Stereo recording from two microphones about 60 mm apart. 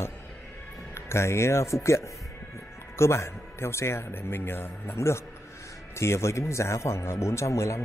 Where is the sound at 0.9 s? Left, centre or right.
Left.